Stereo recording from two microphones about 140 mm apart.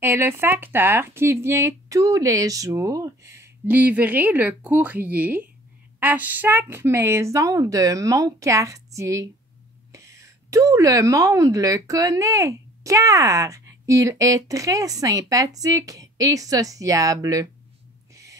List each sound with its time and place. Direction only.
0.0 s a woman's voice: 15° right (ahead or behind)
18.1 s gasp: 25° right (ahead or behind)